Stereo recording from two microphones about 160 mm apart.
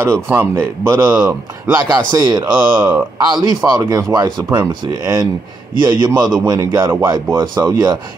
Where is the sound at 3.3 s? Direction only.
20° right (ahead or behind).